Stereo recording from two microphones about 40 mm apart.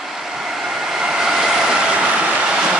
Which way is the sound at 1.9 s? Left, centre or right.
Right.